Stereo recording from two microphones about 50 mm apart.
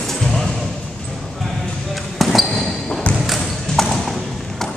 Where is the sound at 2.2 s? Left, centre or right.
Centre.